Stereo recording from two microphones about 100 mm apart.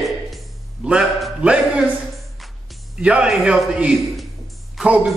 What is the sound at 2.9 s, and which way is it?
A man's voice, 10° right (ahead or behind).